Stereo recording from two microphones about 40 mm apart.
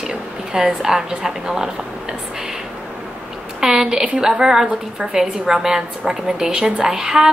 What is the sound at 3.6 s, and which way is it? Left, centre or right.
A woman's voice, centre.